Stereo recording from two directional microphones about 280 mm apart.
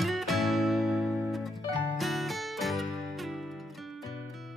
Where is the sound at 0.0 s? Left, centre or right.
Centre.